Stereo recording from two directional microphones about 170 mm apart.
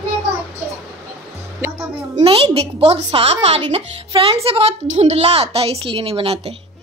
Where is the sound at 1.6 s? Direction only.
10° right (ahead or behind).